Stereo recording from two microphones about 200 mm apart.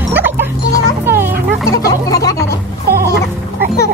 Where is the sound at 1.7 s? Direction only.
15° left (ahead or behind).